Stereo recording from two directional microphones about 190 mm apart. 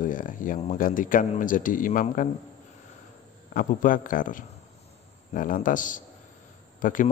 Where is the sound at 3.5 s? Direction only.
45° left (ahead or behind).